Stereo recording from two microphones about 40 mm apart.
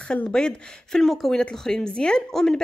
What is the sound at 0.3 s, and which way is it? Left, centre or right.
Speech, centre.